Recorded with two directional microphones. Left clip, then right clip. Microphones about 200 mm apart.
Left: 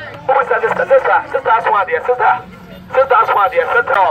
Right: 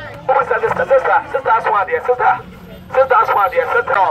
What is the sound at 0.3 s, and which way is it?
Speech, 5° left (ahead or behind).